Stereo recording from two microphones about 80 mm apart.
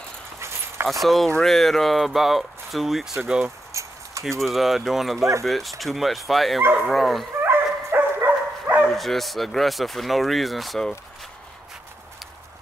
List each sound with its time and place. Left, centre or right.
1.0 s speech: centre
3.7 s a sound: right
4.4 s speech: centre
7.4 s dog: right
8.8 s speech: centre